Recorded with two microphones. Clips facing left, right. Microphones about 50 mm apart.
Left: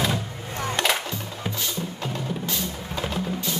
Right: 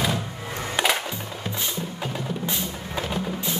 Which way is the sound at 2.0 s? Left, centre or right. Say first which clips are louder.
Even; centre.